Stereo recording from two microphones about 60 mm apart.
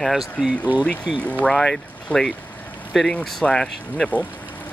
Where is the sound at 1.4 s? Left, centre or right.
Centre.